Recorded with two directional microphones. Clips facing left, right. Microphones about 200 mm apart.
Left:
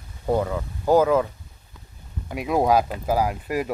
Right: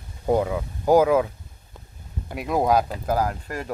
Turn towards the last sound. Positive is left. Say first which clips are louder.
# left 3 dB
turn(degrees=10)  # may be behind; listen again after turning